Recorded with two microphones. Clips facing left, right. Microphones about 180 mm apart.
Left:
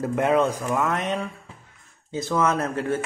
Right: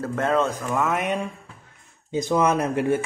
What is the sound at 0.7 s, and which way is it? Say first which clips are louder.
Speech: right 1 dB; centre (ahead or behind).